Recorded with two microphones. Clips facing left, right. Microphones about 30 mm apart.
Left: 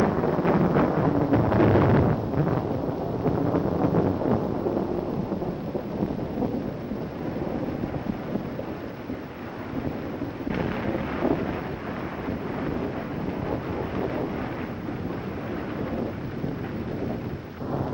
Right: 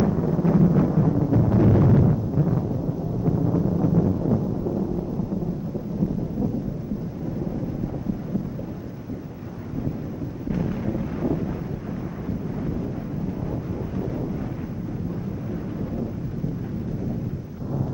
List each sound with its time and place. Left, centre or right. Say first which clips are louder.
0.0 s wind noise: even; left
10.5 s wind noise: right 1 dB; left
13.9 s wind noise: even; left